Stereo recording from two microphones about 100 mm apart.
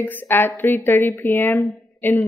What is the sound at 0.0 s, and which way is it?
Speech, 20° left (ahead or behind).